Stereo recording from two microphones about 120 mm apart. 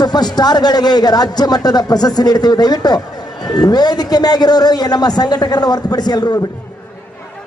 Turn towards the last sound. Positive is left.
turn(degrees=30)  # may be behind; listen again after turning